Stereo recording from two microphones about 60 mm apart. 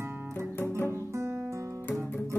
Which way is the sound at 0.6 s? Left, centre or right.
Left.